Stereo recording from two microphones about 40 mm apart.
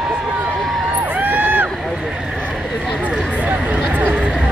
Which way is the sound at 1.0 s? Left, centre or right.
Right.